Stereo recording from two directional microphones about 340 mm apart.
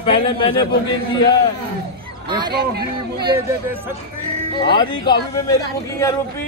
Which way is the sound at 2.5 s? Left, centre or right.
Right.